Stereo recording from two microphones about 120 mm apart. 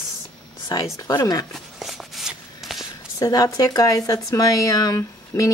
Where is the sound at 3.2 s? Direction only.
30° left (ahead or behind).